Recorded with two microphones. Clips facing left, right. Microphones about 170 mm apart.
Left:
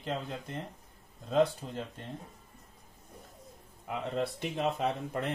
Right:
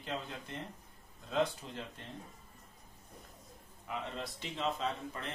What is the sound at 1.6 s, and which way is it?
Speech, 45° left (ahead or behind).